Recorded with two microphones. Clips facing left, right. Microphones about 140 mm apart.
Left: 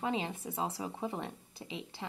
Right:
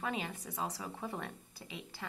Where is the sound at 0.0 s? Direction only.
25° left (ahead or behind).